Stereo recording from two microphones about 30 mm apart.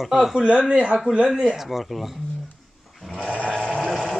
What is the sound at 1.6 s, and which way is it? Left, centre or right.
Speech, centre.